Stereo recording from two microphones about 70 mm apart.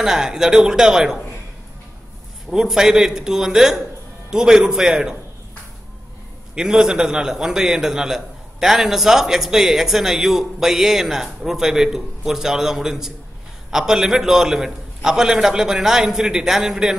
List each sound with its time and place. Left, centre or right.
0.0 s a man's voice: centre
2.5 s a man's voice: centre
6.5 s a man's voice: centre